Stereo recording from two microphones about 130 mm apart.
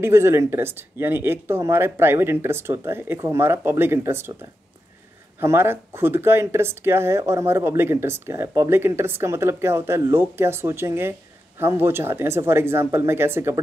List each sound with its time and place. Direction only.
0.0 s speech: 20° right (ahead or behind)